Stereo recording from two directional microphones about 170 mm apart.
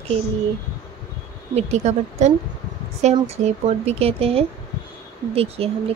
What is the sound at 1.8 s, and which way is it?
Speech, 40° right (ahead or behind).